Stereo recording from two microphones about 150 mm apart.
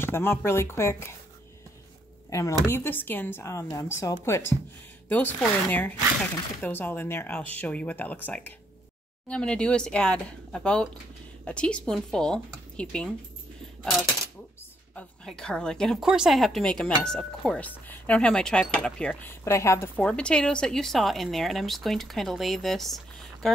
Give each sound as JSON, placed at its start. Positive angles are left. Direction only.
{"t": 0.0, "sound": "speech", "side_deg": 15}
{"t": 2.2, "sound": "a sound", "side_deg": 20}
{"t": 2.6, "sound": "a woman's voice", "side_deg": 15}
{"t": 15.0, "sound": "a woman's voice", "side_deg": 5}
{"t": 20.0, "sound": "a woman's voice", "side_deg": 5}